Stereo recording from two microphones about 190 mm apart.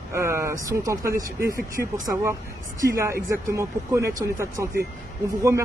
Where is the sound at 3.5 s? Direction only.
15° right (ahead or behind).